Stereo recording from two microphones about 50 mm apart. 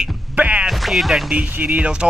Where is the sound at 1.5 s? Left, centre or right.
Right.